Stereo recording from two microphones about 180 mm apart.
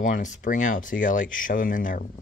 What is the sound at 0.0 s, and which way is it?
Speech, 45° left (ahead or behind).